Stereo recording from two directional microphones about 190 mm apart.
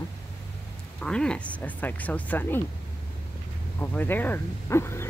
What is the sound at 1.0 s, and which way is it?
Speech, 5° left (ahead or behind).